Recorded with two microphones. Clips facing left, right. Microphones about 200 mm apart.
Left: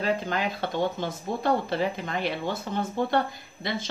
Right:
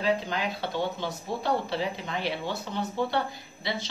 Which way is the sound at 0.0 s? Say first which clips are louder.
Left 1 dB; 50° left (ahead or behind).